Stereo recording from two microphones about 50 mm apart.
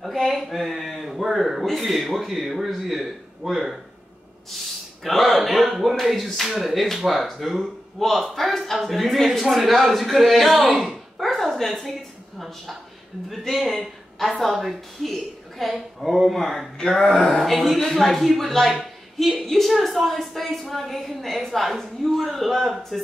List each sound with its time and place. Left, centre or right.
0.0 s a woman's voice: centre
5.0 s a woman's voice: centre
10.8 s a sound: centre
12.4 s a woman's voice: centre
16.7 s a sound: centre
17.4 s a woman's voice: centre